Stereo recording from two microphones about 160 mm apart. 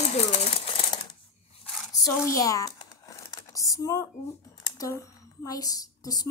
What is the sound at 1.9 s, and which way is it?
Crumpling, 20° left (ahead or behind).